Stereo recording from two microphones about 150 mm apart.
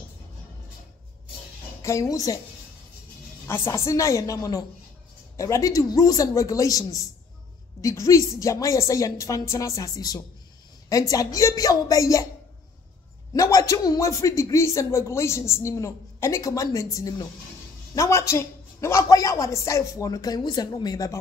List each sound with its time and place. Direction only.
1.8 s a man's voice: 20° left (ahead or behind)
3.4 s a man's voice: 15° left (ahead or behind)
13.3 s a man's voice: 20° left (ahead or behind)